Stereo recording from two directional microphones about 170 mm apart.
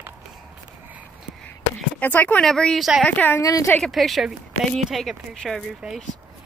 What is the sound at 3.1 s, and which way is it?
Speech, 10° left (ahead or behind).